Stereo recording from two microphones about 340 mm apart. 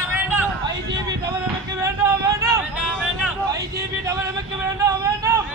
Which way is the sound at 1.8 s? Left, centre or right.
Centre.